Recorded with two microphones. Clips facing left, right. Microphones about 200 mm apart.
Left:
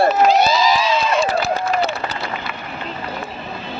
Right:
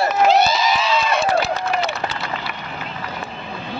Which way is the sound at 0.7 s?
60° right (ahead or behind).